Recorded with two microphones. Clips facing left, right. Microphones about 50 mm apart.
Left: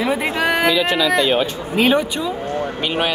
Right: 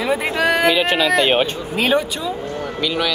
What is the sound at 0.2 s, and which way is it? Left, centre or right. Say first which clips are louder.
Speech: right 1 dB; left.